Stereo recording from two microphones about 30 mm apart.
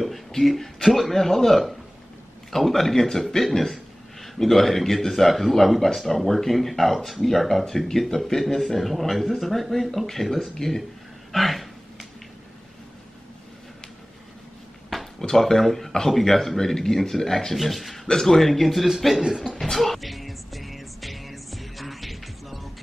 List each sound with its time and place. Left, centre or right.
0.6 s a man's voice: centre
15.1 s speech: centre
17.6 s speech: centre
19.2 s speech: right
19.6 s music: centre